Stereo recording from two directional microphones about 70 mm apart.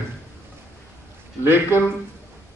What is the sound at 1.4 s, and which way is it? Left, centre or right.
Speech, right.